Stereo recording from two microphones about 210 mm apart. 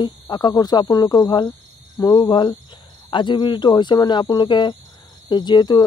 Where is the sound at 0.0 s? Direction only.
20° left (ahead or behind).